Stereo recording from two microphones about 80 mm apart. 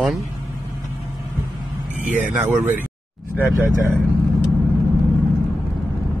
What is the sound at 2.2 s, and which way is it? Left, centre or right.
Speech, right.